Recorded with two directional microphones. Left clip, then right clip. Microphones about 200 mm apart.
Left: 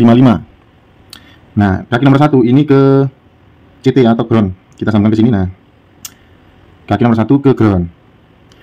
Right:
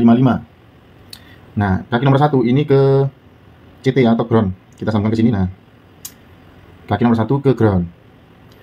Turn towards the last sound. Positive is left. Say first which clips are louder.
# left 5 dB
turn(degrees=55)  # may be behind; listen again after turning